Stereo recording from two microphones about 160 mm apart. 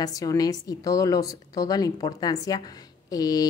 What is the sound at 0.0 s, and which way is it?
A woman's voice, 20° left (ahead or behind).